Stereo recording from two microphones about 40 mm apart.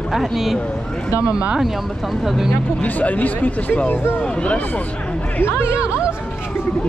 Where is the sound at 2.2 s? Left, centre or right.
Centre.